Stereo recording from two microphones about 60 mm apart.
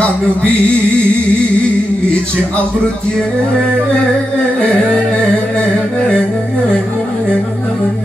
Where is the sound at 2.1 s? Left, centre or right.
Centre.